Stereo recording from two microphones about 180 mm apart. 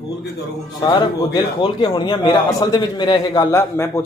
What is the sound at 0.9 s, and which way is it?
A man's voice, 25° left (ahead or behind).